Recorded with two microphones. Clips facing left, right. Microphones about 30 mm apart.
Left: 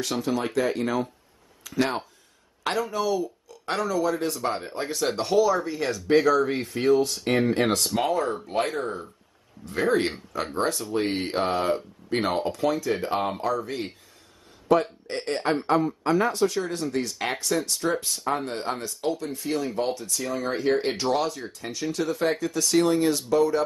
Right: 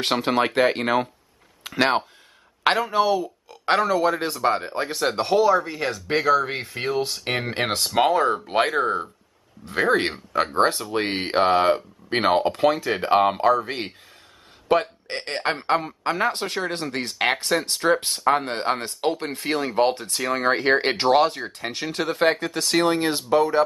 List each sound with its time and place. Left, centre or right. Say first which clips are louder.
0.0 s speech: right 5 dB; right
4.8 s speech: right 1 dB; right